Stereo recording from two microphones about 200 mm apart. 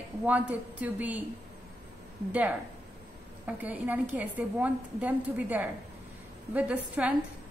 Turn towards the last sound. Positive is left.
turn(degrees=-5)  # may be behind; listen again after turning